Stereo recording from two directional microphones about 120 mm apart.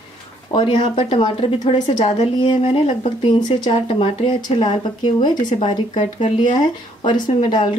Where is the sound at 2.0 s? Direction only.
50° left (ahead or behind).